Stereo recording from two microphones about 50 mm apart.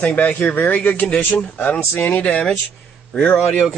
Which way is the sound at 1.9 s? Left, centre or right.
Left.